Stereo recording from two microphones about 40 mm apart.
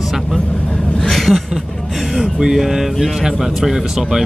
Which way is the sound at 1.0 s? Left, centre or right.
Centre.